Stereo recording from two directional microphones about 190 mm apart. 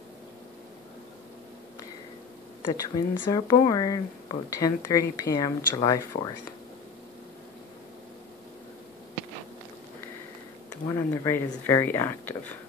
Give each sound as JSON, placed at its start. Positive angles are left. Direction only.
{"t": 2.8, "sound": "speech", "side_deg": 20}
{"t": 10.9, "sound": "speech", "side_deg": 10}